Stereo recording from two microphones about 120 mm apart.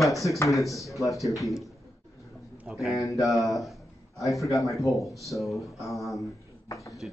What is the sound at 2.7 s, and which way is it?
A man's voice, centre (ahead or behind).